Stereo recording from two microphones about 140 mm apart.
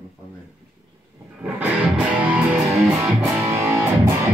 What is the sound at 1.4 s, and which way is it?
Music, 10° right (ahead or behind).